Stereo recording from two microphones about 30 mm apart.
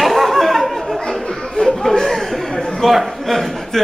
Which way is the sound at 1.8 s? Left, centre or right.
Centre.